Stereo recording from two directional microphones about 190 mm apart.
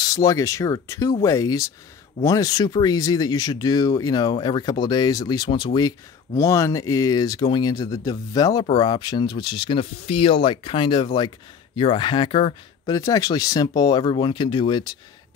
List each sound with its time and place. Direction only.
0.0 s speech: 20° left (ahead or behind)